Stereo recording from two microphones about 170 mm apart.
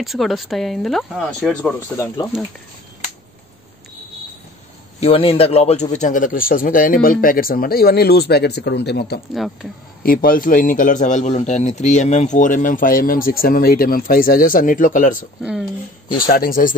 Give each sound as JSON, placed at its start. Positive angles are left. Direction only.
{"t": 0.0, "sound": "speech", "side_deg": 0}
{"t": 5.0, "sound": "a man's voice", "side_deg": 35}
{"t": 9.3, "sound": "speech", "side_deg": 0}
{"t": 10.0, "sound": "a man's voice", "side_deg": 60}